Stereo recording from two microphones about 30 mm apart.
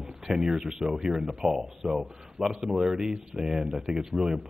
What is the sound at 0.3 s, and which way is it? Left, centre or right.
Speech, right.